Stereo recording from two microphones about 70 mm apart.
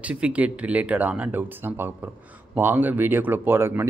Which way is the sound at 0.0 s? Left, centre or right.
Centre.